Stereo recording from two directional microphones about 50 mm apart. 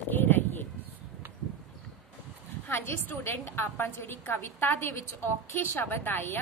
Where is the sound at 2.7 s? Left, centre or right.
Left.